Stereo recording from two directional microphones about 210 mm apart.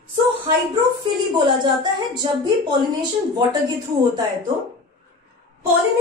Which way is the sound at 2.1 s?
20° right (ahead or behind).